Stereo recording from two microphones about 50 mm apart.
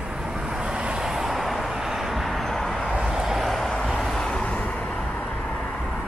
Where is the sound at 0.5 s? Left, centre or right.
Centre.